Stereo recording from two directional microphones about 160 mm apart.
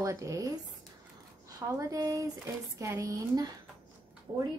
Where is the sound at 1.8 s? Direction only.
20° right (ahead or behind).